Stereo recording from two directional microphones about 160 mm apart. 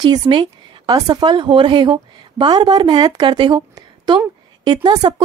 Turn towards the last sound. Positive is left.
turn(degrees=-25)  # may be behind; listen again after turning